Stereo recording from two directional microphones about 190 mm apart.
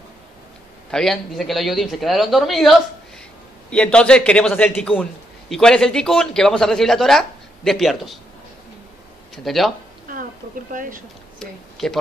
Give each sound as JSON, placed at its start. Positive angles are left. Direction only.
{"t": 0.9, "sound": "speech", "side_deg": 0}
{"t": 9.3, "sound": "speech", "side_deg": 0}
{"t": 10.1, "sound": "a sound", "side_deg": -45}
{"t": 10.7, "sound": "speech", "side_deg": -45}
{"t": 11.3, "sound": "speech", "side_deg": 0}